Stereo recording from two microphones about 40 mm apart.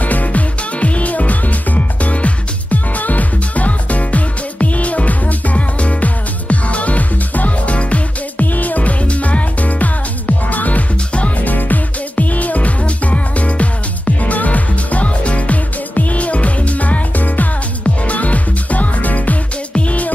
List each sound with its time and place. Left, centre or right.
0.0 s music: left